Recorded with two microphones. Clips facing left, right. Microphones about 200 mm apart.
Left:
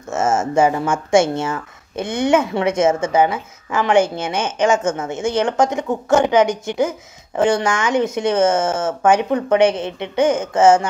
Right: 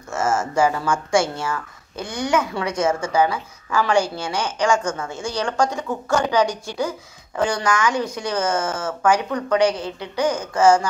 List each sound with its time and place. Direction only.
0.1 s speech: 25° left (ahead or behind)